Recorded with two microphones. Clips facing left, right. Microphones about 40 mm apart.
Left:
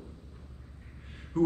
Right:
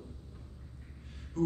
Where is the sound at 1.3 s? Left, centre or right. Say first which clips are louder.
Left 4 dB; left.